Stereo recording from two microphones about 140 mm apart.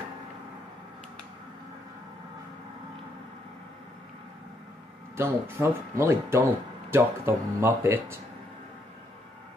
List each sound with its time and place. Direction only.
5.1 s speech: 20° right (ahead or behind)